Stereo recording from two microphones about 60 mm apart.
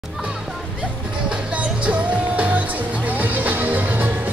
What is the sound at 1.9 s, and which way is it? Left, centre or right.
Music, right.